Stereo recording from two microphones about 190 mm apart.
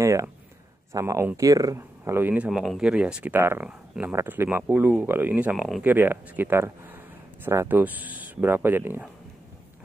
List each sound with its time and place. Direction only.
0.0 s speech: 15° right (ahead or behind)